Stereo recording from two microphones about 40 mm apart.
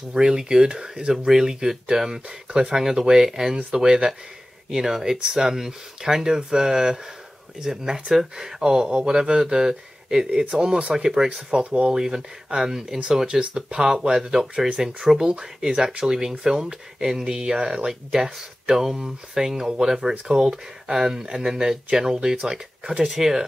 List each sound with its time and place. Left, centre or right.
0.1 s speech: centre
11.5 s speech: right
11.9 s speech: centre